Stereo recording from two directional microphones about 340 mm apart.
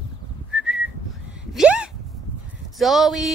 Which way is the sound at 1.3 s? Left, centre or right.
Centre.